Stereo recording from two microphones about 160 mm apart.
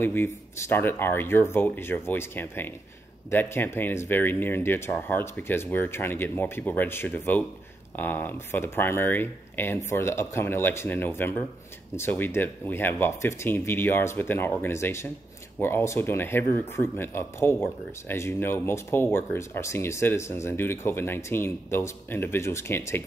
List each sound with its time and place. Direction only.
0.0 s speech: 15° left (ahead or behind)